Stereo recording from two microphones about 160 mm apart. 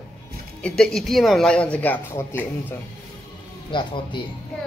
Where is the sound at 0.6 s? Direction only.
5° left (ahead or behind).